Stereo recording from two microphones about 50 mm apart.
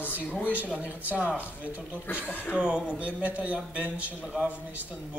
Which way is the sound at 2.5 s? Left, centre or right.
Right.